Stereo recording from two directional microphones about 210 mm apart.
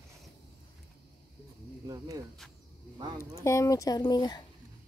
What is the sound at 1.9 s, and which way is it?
Speech, 15° right (ahead or behind).